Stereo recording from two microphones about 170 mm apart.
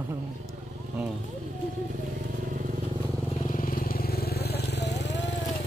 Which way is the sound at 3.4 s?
50° left (ahead or behind).